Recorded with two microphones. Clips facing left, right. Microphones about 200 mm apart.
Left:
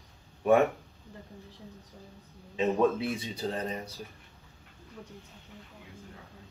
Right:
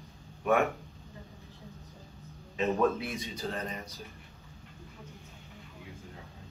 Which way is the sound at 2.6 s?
15° left (ahead or behind).